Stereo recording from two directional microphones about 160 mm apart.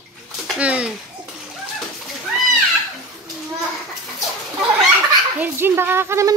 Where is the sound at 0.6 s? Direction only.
10° right (ahead or behind).